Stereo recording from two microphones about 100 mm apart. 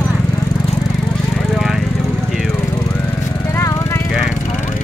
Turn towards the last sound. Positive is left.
turn(degrees=30)  # may be behind; listen again after turning